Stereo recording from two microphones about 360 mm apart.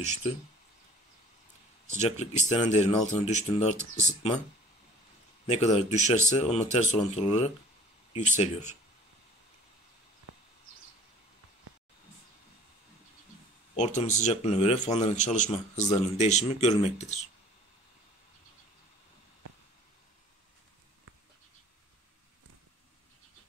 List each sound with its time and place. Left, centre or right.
2.0 s speech: centre
5.5 s a man's voice: centre
13.7 s a man's voice: centre